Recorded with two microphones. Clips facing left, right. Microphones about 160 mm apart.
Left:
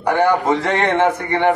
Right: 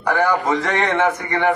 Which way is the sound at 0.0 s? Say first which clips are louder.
Left 3 dB; 25° left (ahead or behind).